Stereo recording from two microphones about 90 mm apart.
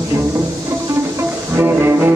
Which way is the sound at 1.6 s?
25° right (ahead or behind).